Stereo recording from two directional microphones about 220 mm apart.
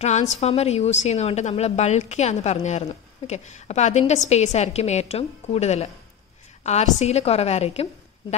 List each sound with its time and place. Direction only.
0.0 s a woman's voice: 30° left (ahead or behind)